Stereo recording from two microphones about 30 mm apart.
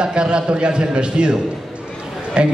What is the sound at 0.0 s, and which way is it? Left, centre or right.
A man's voice, right.